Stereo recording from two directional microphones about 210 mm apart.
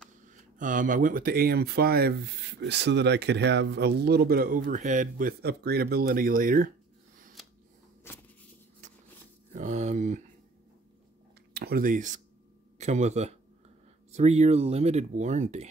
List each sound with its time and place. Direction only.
0.3 s speech: 40° right (ahead or behind)
9.5 s a sound: 35° right (ahead or behind)
11.5 s speech: 45° right (ahead or behind)